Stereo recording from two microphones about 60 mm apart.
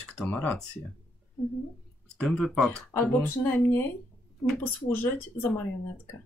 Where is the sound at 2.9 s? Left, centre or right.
Left.